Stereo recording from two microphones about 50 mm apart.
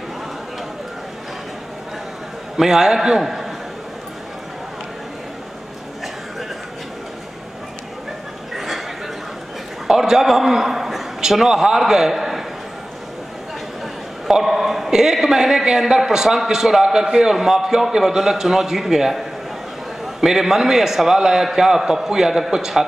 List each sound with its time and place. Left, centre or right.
2.5 s a man's voice: centre
8.5 s chuckle: centre
9.8 s a sound: centre
14.2 s a man's voice: centre